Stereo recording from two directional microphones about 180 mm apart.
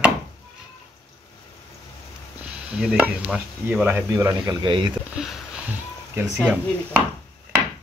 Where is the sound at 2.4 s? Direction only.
5° right (ahead or behind).